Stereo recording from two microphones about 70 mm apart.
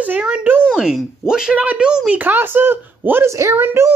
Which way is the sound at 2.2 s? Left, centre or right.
Right.